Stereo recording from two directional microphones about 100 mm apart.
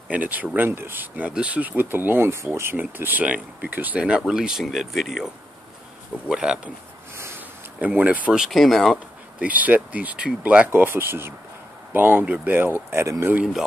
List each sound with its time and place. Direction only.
0.1 s speech: 15° right (ahead or behind)
7.8 s speech: 15° right (ahead or behind); by 8.9 s centre (ahead or behind)
9.4 s speech: 15° right (ahead or behind)